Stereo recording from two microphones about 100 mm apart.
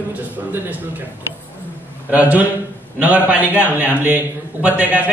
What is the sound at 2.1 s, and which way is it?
A man's voice, 15° right (ahead or behind).